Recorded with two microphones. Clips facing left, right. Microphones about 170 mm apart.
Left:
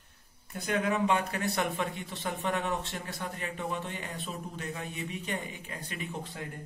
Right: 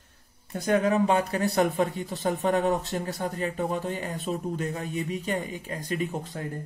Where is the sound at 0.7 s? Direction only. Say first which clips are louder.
Right 6 dB; 40° right (ahead or behind).